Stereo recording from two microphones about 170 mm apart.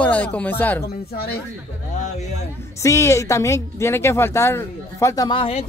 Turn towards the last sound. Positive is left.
turn(degrees=30)  # may be behind; listen again after turning